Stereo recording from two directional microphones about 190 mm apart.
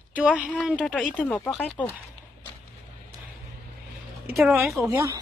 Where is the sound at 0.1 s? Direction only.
5° right (ahead or behind).